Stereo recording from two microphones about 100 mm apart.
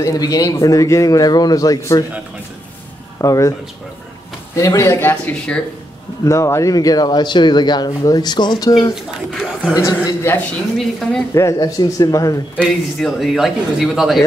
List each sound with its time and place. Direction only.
0.0 s speech: 35° left (ahead or behind)
3.2 s speech: 35° left (ahead or behind)
4.6 s speech: 30° left (ahead or behind)
9.3 s speech: 5° left (ahead or behind)
9.8 s speech: 30° left (ahead or behind)
10.8 s a man's voice: centre (ahead or behind)
11.3 s speech: 35° left (ahead or behind)
12.6 s a man's voice: centre (ahead or behind)